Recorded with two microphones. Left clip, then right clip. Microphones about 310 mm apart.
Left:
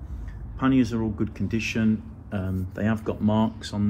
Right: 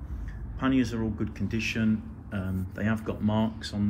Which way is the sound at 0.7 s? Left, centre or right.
Centre.